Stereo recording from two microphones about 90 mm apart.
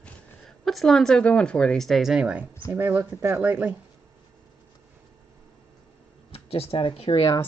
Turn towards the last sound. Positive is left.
turn(degrees=85)